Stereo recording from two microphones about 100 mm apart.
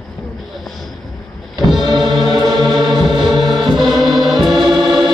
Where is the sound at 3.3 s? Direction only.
50° right (ahead or behind).